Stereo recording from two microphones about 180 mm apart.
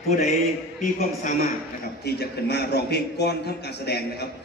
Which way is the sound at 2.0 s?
65° left (ahead or behind).